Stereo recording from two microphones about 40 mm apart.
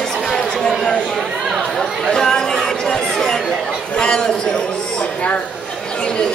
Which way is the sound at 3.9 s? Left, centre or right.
Centre.